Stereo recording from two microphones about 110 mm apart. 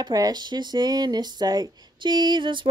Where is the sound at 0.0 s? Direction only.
35° right (ahead or behind).